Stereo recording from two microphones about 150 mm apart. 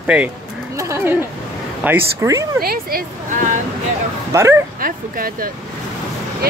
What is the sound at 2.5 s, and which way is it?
Speech, 80° right.